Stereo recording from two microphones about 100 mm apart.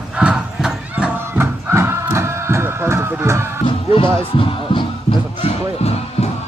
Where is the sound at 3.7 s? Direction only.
55° left (ahead or behind).